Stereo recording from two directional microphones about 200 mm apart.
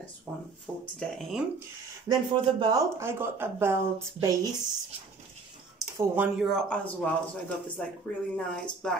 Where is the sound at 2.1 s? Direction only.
20° right (ahead or behind).